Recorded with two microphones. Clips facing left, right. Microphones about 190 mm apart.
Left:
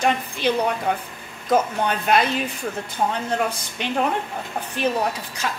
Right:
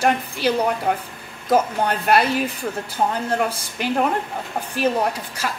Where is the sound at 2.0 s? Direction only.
5° right (ahead or behind).